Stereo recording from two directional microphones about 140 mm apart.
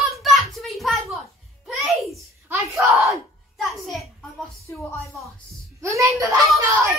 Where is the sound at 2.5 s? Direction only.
20° right (ahead or behind).